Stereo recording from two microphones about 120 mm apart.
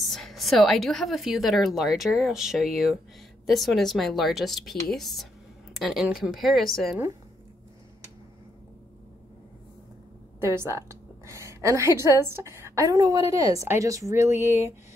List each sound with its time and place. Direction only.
0.0 s a woman's voice: centre (ahead or behind)
10.4 s a woman's voice: 20° right (ahead or behind)